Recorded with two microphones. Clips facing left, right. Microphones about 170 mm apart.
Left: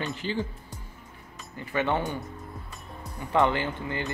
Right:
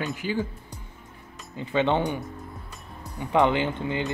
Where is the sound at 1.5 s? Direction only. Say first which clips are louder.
Right 4 dB; 20° right (ahead or behind).